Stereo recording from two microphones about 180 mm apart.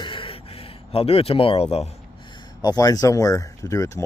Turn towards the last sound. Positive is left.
turn(degrees=20)  # may be behind; listen again after turning